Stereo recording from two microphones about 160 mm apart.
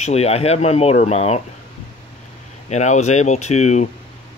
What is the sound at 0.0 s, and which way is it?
Speech, 40° left (ahead or behind).